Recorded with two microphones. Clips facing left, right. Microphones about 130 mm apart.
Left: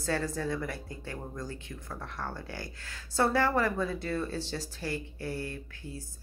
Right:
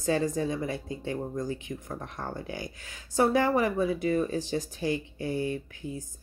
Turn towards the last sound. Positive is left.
turn(degrees=-15)  # may be behind; listen again after turning